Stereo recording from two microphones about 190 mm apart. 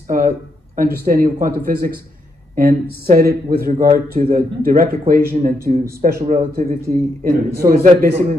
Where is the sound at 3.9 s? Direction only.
35° right (ahead or behind).